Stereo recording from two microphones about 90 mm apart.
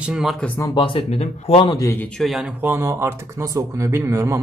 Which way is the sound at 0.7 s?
80° left.